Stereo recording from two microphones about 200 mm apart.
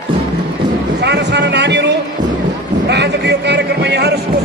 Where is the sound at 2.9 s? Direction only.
55° right (ahead or behind).